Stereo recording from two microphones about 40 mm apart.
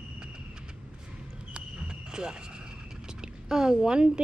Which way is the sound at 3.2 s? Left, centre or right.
Centre.